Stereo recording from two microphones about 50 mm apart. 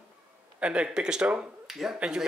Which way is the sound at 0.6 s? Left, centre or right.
Right.